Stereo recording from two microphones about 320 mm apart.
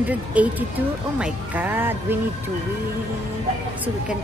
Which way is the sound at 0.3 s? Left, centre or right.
Centre.